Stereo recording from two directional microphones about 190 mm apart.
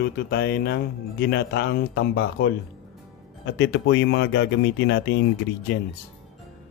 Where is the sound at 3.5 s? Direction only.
65° left (ahead or behind).